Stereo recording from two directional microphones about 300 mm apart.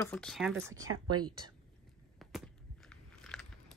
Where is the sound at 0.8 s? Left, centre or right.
Right.